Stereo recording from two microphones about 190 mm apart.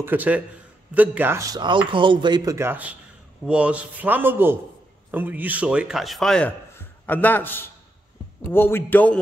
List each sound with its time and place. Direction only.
0.0 s a man's voice: 10° right (ahead or behind); by 9.2 s 10° left (ahead or behind)